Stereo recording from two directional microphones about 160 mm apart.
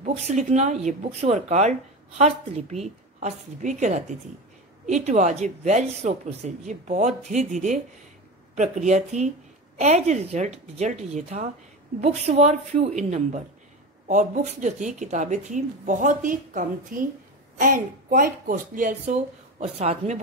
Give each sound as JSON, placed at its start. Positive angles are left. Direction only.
{"t": 0.0, "sound": "speech", "side_deg": -45}
{"t": 19.6, "sound": "speech", "side_deg": -40}